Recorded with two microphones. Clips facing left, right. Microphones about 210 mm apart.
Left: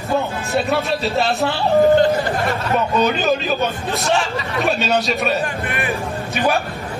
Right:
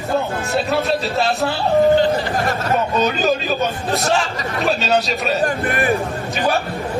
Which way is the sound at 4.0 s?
40° right (ahead or behind).